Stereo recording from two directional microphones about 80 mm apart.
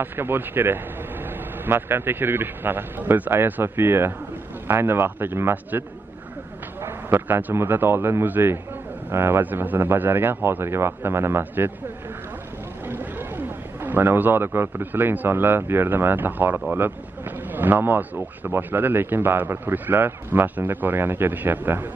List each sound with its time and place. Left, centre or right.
0.0 s a man's voice: right
12.8 s a man's voice: right